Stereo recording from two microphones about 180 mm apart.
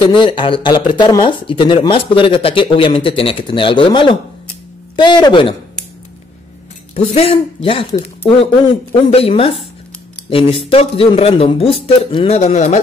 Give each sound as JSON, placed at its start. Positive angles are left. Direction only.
{"t": 0.0, "sound": "speech", "side_deg": 25}
{"t": 7.0, "sound": "speech", "side_deg": 35}
{"t": 8.9, "sound": "speech", "side_deg": 30}